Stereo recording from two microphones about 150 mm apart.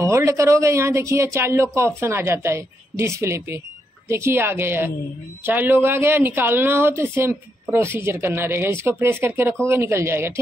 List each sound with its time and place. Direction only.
0.0 s speech: 20° right (ahead or behind)